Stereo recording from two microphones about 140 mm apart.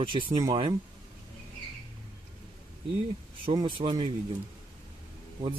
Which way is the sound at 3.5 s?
35° right (ahead or behind).